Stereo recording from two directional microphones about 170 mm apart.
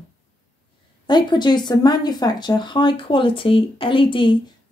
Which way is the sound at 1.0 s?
25° left (ahead or behind).